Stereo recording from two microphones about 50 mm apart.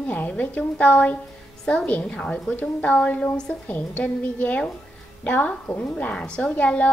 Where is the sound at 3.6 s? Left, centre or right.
Left.